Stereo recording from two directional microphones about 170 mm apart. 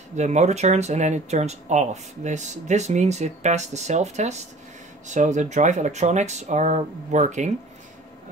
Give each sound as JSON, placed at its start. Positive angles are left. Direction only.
{"t": 0.1, "sound": "speech", "side_deg": -45}